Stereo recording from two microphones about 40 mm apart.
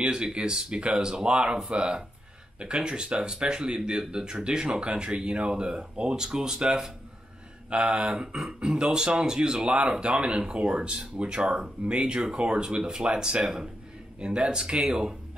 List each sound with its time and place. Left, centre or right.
0.0 s speech: right